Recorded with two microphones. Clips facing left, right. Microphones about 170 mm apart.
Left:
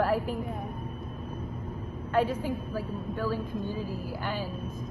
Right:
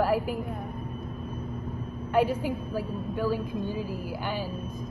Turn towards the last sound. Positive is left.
turn(degrees=-5)  # may be behind; listen again after turning